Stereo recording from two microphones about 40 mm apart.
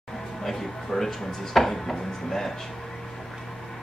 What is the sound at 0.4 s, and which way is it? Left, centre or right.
Speech, centre.